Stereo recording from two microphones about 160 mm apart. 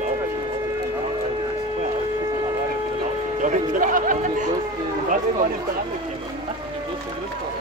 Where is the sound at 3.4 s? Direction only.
55° right (ahead or behind).